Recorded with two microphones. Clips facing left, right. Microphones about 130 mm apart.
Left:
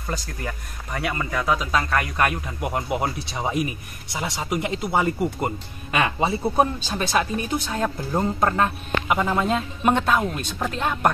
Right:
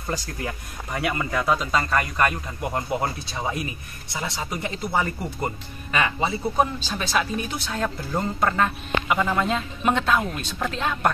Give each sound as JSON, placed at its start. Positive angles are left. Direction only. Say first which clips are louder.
{"t": 0.0, "sound": "speech", "louder": "right 1 dB", "side_deg": -10}
{"t": 6.5, "sound": "speech", "louder": "left 2 dB", "side_deg": 10}
{"t": 7.7, "sound": "speech", "louder": "even", "side_deg": 25}